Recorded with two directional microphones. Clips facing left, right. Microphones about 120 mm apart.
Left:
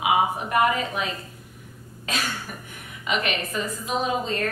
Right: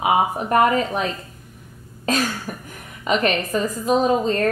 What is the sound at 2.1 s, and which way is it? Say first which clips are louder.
A woman's voice: right 8 dB; 40° right (ahead or behind).